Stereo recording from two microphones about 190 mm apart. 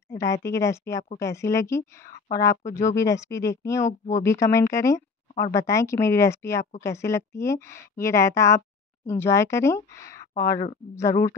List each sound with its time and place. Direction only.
0.1 s a woman's voice: 15° left (ahead or behind)